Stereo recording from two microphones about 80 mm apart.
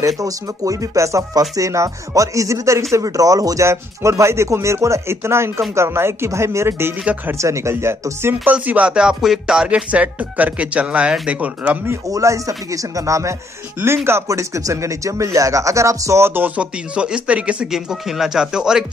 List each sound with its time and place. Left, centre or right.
0.0 s speech: right
8.5 s speech: centre
12.1 s speech: right
13.7 s speech: right; by 18.9 s centre